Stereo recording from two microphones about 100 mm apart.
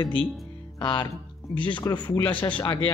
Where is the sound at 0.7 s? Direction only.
50° left (ahead or behind).